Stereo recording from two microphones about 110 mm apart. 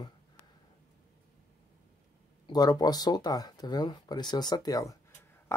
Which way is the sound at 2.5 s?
35° left (ahead or behind).